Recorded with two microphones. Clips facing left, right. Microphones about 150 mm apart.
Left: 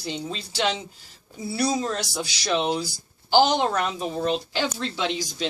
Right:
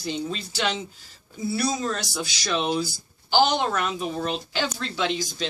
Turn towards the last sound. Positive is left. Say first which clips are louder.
# right 1 dB
turn(degrees=25)  # may be behind; listen again after turning